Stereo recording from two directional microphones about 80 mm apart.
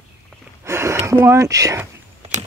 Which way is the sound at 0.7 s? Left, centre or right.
Right.